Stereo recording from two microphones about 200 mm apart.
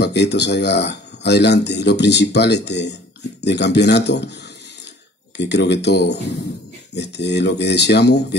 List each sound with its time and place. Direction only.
0.0 s speech: 60° left (ahead or behind)
5.4 s speech: 60° left (ahead or behind)